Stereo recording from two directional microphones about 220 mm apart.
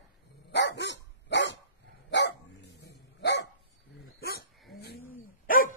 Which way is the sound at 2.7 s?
50° left (ahead or behind).